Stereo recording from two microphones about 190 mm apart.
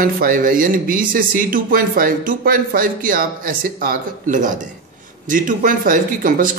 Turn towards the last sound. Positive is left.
turn(degrees=-45)  # may be behind; listen again after turning